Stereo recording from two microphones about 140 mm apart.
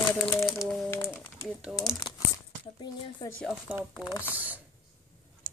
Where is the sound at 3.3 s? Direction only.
5° left (ahead or behind).